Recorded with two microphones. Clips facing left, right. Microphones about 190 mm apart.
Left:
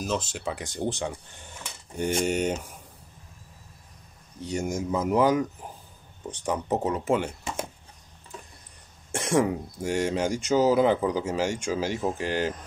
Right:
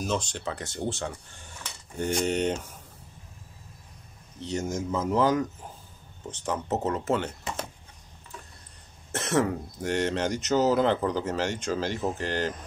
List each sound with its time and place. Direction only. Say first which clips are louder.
0.0 s speech: even; 5° left (ahead or behind)
2.1 s speech: even; 10° left (ahead or behind)
4.4 s speech: left 1 dB; 10° left (ahead or behind)
9.1 s speech: left 2 dB; 10° left (ahead or behind)